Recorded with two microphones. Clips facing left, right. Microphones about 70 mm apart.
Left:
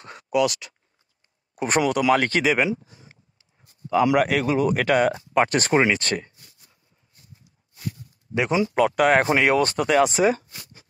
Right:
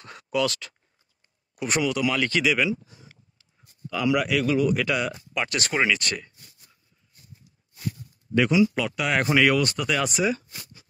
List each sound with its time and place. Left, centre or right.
0.0 s a sound: left
1.9 s speech: left
3.9 s speech: left
8.5 s speech: left